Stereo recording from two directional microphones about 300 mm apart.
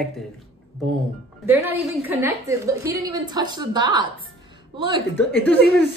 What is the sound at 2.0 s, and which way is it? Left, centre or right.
A woman's voice, centre.